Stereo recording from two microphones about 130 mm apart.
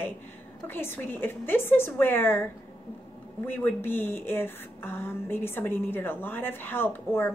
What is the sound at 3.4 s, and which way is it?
A woman's voice, 15° left (ahead or behind).